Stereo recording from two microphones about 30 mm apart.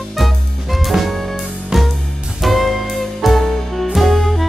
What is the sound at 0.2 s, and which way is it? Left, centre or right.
Music, centre.